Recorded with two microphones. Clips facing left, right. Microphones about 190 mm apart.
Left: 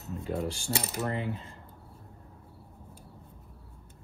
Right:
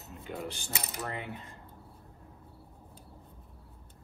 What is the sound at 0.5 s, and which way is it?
Mechanisms, 30° left (ahead or behind).